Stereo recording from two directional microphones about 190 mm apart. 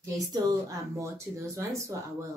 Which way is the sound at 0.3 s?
20° right (ahead or behind).